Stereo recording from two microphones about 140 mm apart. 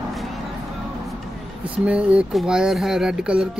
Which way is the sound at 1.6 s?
10° right (ahead or behind).